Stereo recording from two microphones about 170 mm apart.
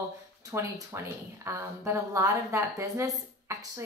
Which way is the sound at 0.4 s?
20° right (ahead or behind).